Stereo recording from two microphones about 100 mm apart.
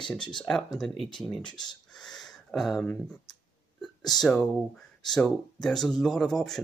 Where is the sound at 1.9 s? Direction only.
5° left (ahead or behind).